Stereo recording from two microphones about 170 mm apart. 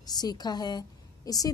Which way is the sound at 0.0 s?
25° left (ahead or behind).